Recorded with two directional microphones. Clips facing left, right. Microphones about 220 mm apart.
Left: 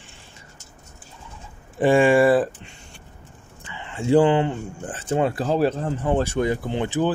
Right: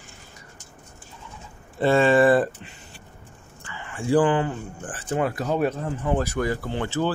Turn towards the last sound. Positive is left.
turn(degrees=15)  # may be behind; listen again after turning